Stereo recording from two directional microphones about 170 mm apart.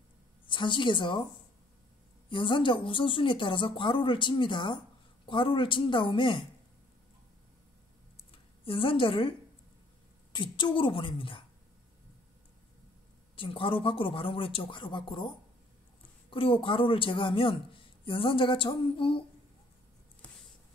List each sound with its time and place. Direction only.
0.5 s a woman's voice: 30° left (ahead or behind)
2.2 s speech: 30° left (ahead or behind)
8.3 s speech: 30° left (ahead or behind)
10.3 s speech: 30° left (ahead or behind)
13.4 s speech: 30° left (ahead or behind)